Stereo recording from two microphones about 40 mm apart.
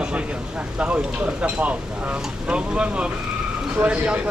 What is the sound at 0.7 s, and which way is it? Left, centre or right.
Speech, right.